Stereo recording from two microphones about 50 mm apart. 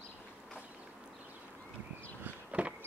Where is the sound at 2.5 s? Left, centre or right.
Right.